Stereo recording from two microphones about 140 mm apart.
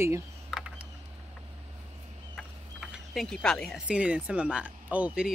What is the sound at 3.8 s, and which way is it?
Speech, 10° right (ahead or behind).